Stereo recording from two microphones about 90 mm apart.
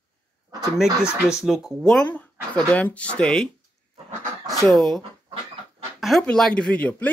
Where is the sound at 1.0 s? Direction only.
5° right (ahead or behind).